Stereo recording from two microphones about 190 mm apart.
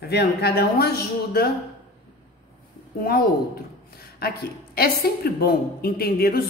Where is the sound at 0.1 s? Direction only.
60° left (ahead or behind).